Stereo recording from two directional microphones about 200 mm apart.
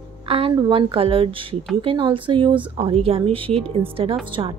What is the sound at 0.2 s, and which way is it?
A woman's voice, 25° right (ahead or behind).